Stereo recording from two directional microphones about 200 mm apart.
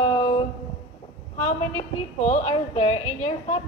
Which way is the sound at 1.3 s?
35° left (ahead or behind).